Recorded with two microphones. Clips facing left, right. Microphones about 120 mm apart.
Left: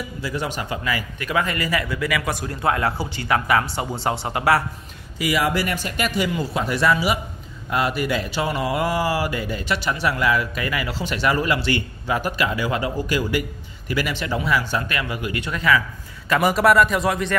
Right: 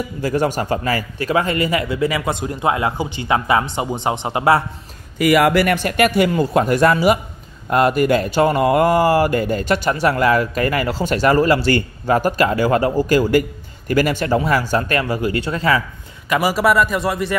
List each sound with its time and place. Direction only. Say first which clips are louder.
0.2 s a man's voice: right 9 dB; 45° right (ahead or behind); by 4.6 s 25° right (ahead or behind)
5.2 s speech: right 8 dB; 60° right (ahead or behind); by 15.8 s 30° right (ahead or behind)
16.3 s speech: right 1 dB; 5° right (ahead or behind)